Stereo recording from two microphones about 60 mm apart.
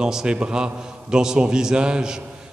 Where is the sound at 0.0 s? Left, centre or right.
Centre.